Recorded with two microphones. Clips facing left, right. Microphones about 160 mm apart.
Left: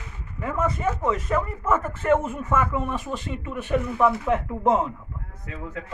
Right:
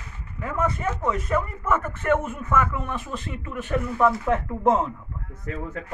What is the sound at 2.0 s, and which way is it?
Speech, 25° left (ahead or behind).